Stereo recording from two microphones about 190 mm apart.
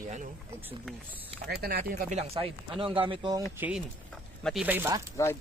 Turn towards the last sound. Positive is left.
turn(degrees=15)  # may be behind; listen again after turning